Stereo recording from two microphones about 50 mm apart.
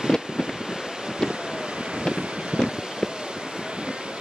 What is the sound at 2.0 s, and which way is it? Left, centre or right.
Wind, centre.